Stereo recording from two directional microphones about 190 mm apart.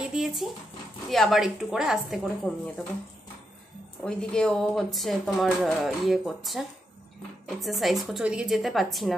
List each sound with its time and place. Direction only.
0.1 s a sound: 5° right (ahead or behind)
1.1 s speech: centre (ahead or behind)
4.0 s speech: 5° left (ahead or behind)